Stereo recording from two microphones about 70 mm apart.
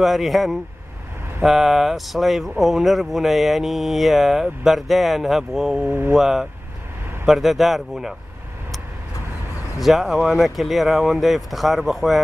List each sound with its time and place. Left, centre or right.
0.0 s speech: centre
5.9 s speech: right
6.1 s speech: centre
9.8 s speech: centre